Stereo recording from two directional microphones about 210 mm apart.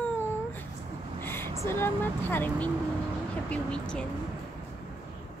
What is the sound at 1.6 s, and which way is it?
Speech, 10° left (ahead or behind).